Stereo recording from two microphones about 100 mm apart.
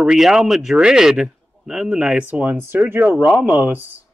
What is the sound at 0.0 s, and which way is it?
A man's voice, 5° right (ahead or behind).